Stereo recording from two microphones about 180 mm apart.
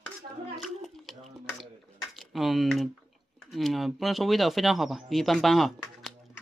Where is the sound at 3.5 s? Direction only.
Centre (ahead or behind).